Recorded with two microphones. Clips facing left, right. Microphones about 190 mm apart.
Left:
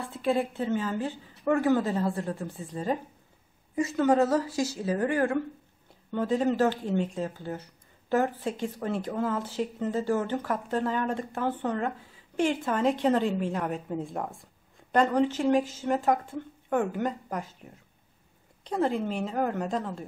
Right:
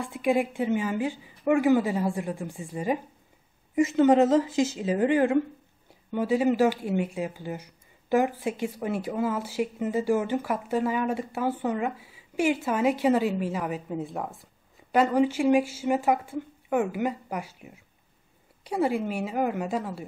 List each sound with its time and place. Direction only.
0.0 s speech: 15° right (ahead or behind)
3.7 s speech: 20° right (ahead or behind)